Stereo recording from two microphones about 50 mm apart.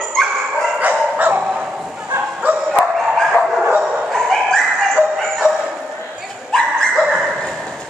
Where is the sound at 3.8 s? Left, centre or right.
Centre.